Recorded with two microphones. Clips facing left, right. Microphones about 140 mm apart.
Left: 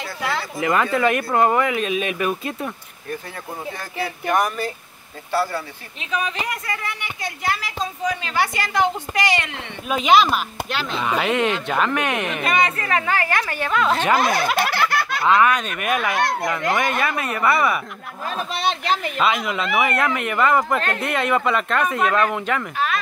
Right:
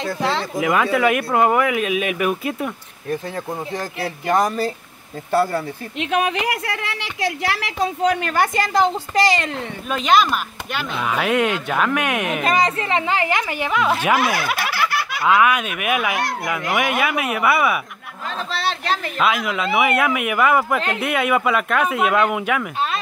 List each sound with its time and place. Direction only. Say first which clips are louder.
0.0 s speech: right 4 dB; 25° right (ahead or behind)
0.6 s speech: right 1 dB; 5° right (ahead or behind)
4.4 s speech: right 3 dB; 35° right (ahead or behind)
5.9 s speech: right 5 dB; 65° right (ahead or behind); by 9.6 s 35° right (ahead or behind)
9.8 s speech: left 1 dB; 5° left (ahead or behind)
12.4 s speech: right 1 dB; 35° right (ahead or behind); by 17.7 s 5° right (ahead or behind)
18.9 s speech: right 1 dB; centre (ahead or behind)